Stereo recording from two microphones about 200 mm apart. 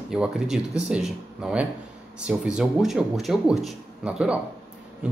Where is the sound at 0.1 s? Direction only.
5° right (ahead or behind).